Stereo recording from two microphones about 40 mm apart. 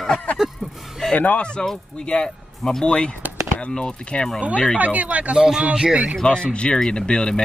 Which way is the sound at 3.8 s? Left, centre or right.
Left.